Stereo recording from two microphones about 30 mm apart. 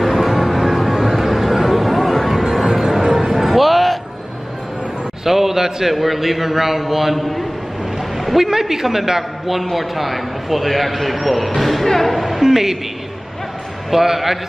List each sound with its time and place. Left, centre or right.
0.0 s music: centre
3.0 s music: centre
3.3 s music: centre
5.2 s a sound: centre
5.9 s a man's voice: centre
8.2 s a sound: centre
8.5 s a man's voice: centre
9.5 s a man's voice: centre
12.2 s a woman's voice: centre
13.8 s a man's voice: centre